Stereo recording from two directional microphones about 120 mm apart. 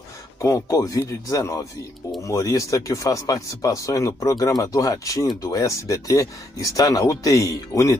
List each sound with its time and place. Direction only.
0.4 s speech: 30° left (ahead or behind)